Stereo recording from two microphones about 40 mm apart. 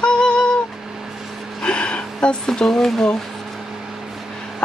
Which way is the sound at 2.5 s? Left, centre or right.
Centre.